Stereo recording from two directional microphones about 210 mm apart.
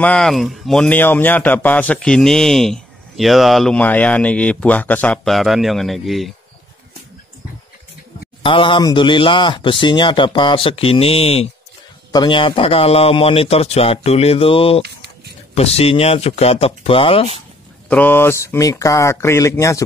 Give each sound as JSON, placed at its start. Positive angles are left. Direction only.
{"t": 0.0, "sound": "speech", "side_deg": 5}
{"t": 8.4, "sound": "speech", "side_deg": 25}
{"t": 17.8, "sound": "speech", "side_deg": 10}